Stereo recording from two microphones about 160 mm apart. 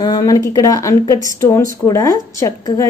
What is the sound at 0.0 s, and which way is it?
A woman's voice, 20° left (ahead or behind).